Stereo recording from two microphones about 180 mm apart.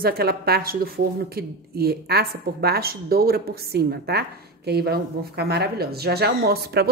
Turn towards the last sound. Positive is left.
turn(degrees=-60)  # may be behind; listen again after turning